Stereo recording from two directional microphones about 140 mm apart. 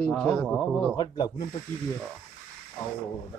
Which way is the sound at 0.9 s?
30° left (ahead or behind).